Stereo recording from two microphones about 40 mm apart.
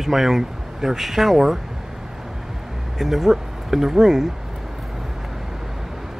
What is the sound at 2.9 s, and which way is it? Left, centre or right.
Speech, centre.